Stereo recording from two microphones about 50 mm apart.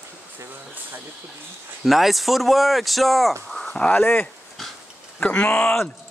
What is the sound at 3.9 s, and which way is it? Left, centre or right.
Speech, left.